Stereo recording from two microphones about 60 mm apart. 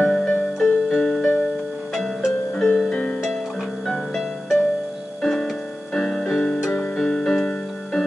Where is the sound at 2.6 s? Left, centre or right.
Centre.